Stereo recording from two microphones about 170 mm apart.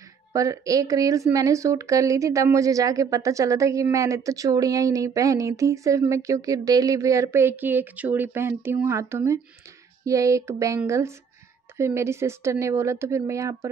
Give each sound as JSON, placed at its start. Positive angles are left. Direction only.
{"t": 0.3, "sound": "a woman's voice", "side_deg": -20}